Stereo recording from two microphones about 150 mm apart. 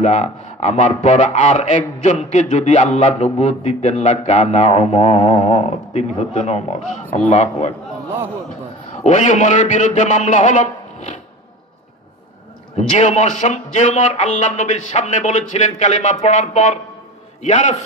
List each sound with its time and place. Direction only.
0.0 s speech: 50° left (ahead or behind)
8.9 s speech: 55° left (ahead or behind)
12.7 s a man's voice: 55° left (ahead or behind)